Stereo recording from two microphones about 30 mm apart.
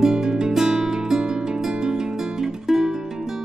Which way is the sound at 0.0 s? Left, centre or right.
Right.